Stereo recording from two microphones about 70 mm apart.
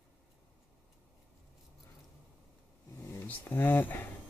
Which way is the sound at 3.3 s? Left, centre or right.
Left.